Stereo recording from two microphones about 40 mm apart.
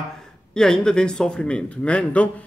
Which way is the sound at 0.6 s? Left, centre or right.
Centre.